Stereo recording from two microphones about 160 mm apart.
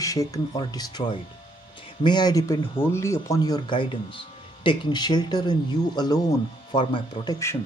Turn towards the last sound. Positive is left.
turn(degrees=30)  # may be behind; listen again after turning